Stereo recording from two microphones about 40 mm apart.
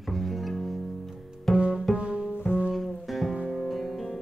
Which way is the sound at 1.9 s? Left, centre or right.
Right.